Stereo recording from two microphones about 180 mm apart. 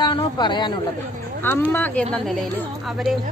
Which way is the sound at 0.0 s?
25° left (ahead or behind).